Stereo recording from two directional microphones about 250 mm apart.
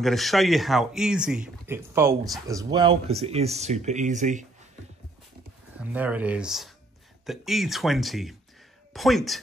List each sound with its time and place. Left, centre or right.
0.0 s speech: centre; by 4.5 s right
5.8 s speech: centre